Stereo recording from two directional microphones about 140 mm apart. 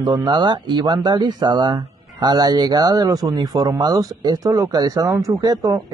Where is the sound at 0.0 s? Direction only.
30° right (ahead or behind).